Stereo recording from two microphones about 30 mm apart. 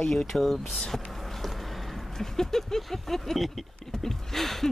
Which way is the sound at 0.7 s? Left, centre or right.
Centre.